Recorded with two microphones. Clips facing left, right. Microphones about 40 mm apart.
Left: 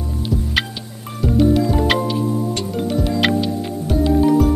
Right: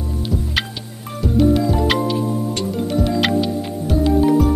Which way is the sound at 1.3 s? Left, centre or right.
Centre.